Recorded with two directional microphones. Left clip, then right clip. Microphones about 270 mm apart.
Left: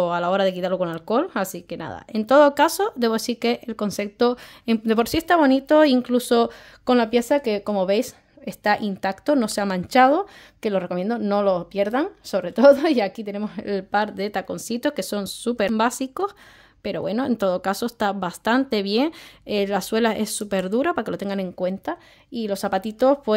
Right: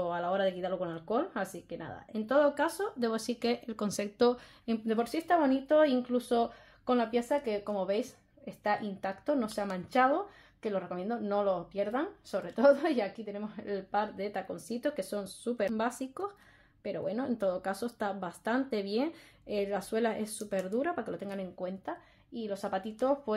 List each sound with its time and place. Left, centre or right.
0.0 s speech: left